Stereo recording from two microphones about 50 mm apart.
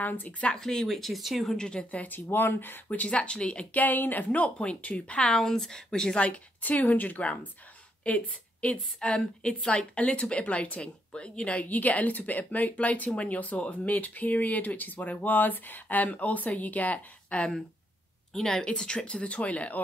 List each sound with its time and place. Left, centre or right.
0.0 s speech: left
0.6 s speech: centre
1.5 s a woman's voice: centre
2.0 s speech: left
2.9 s a woman's voice: left
3.7 s a woman's voice: left
5.2 s a woman's voice: centre
6.6 s a woman's voice: left
18.3 s a woman's voice: centre; by 19.8 s left